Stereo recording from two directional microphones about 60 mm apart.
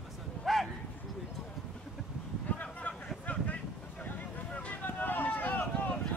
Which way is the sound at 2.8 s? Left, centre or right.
Left.